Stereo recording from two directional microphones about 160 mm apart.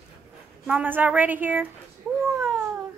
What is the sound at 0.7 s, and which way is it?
A woman's voice, 10° right (ahead or behind).